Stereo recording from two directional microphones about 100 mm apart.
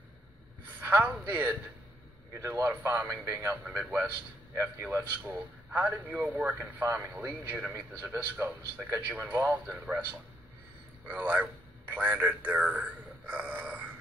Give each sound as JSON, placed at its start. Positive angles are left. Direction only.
{"t": 0.7, "sound": "a sound", "side_deg": -20}
{"t": 1.1, "sound": "a man's voice", "side_deg": -20}
{"t": 3.6, "sound": "a man's voice", "side_deg": -15}
{"t": 11.1, "sound": "a man's voice", "side_deg": -15}